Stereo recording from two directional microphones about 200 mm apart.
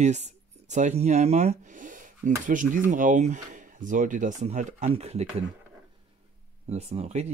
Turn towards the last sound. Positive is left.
turn(degrees=-35)  # may be behind; listen again after turning